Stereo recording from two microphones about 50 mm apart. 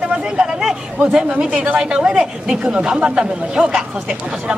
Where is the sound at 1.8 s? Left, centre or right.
Centre.